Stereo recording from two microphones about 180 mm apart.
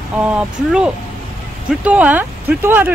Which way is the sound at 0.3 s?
5° right (ahead or behind).